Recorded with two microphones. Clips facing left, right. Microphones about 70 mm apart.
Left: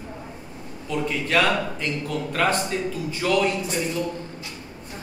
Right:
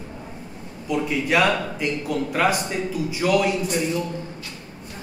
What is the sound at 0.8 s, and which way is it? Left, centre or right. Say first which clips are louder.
A man's voice: right 3 dB; centre.